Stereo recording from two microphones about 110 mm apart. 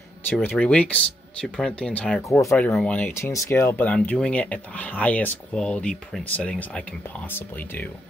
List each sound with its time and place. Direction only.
0.3 s speech: 15° left (ahead or behind)
2.2 s speech: 30° left (ahead or behind)
2.5 s speech: 10° left (ahead or behind)
3.2 s speech: 25° left (ahead or behind)